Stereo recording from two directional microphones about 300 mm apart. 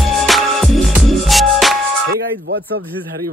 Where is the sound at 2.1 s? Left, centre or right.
Right.